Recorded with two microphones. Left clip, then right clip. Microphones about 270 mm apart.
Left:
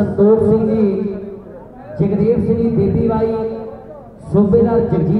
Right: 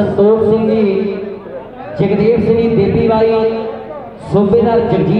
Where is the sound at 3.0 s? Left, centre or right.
Right.